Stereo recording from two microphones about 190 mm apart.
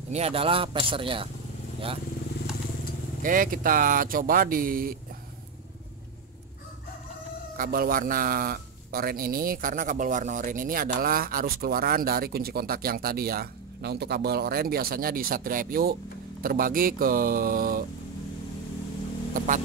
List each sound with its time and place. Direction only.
0.1 s a man's voice: 30° right (ahead or behind)
3.2 s speech: 45° right (ahead or behind)
7.5 s speech: 50° right (ahead or behind)
19.3 s mains hum: 45° right (ahead or behind)